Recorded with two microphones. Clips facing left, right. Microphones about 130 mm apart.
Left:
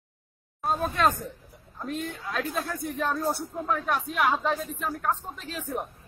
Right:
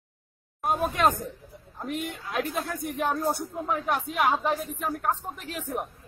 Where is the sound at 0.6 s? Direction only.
20° right (ahead or behind).